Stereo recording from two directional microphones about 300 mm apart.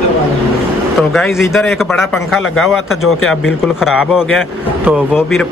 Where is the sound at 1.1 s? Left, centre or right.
Centre.